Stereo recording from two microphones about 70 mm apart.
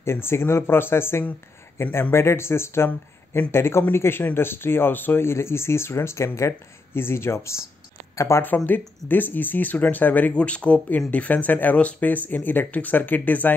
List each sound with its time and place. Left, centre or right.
0.0 s speech: left
8.6 s speech: left